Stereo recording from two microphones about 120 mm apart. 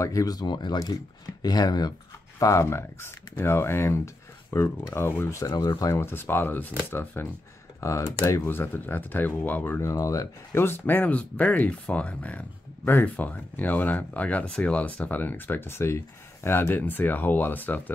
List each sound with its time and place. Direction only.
0.0 s speech: 30° left (ahead or behind)
5.5 s speech: 45° left (ahead or behind)
5.8 s speech: 25° left (ahead or behind)